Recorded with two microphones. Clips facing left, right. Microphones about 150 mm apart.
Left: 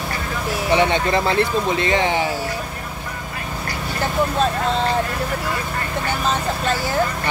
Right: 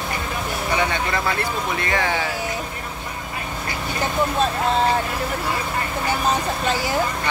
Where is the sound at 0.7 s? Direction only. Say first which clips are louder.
Left 6 dB; 20° left (ahead or behind).